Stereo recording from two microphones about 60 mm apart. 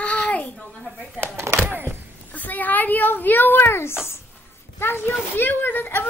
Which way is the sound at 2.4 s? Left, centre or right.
Left.